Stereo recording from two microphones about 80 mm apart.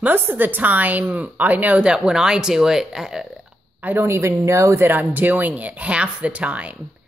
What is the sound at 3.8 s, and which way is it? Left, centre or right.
Speech, right.